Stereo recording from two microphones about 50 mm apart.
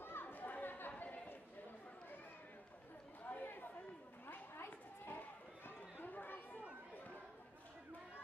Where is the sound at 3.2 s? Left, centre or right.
Left.